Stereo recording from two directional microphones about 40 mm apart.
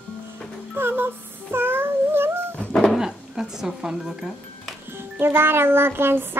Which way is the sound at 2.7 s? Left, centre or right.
Centre.